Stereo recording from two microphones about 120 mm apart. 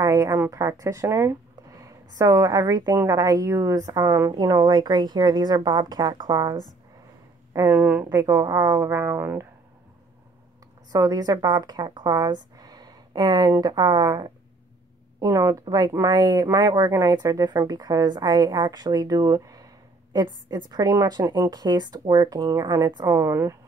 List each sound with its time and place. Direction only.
0.0 s speech: 30° right (ahead or behind)
7.5 s speech: 30° right (ahead or behind)
7.8 s a woman's voice: 15° right (ahead or behind)
8.1 s speech: 25° right (ahead or behind)
10.9 s a woman's voice: 30° right (ahead or behind)
15.6 s speech: 35° right (ahead or behind)